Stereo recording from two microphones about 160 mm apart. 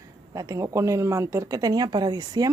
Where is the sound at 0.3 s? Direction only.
20° right (ahead or behind).